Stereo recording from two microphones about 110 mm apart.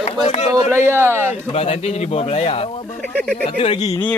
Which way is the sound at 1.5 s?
70° left (ahead or behind).